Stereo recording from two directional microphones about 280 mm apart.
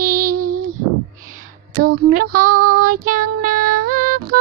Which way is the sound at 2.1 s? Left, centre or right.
Right.